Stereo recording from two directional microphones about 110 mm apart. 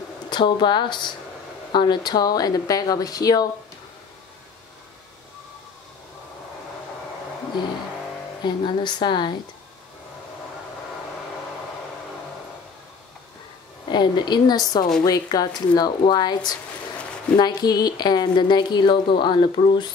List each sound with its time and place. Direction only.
0.3 s a woman's voice: 45° left (ahead or behind)
8.5 s a woman's voice: 45° left (ahead or behind)
13.8 s speech: 40° left (ahead or behind)